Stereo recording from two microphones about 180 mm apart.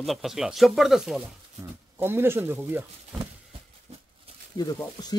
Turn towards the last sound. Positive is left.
turn(degrees=20)  # may be behind; listen again after turning